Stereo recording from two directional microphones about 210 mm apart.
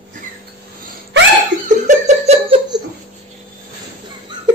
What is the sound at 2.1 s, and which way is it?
Giggle, 30° right (ahead or behind).